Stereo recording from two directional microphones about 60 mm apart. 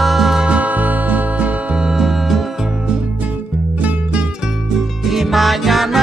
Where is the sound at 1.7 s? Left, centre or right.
Centre.